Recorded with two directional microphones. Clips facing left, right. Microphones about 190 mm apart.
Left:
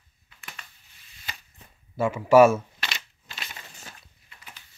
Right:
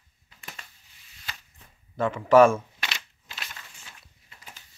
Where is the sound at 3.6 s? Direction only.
40° left (ahead or behind).